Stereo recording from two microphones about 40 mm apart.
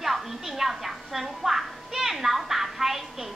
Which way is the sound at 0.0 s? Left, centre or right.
Centre.